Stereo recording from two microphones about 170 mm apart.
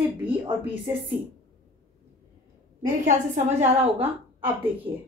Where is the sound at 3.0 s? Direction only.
45° right (ahead or behind).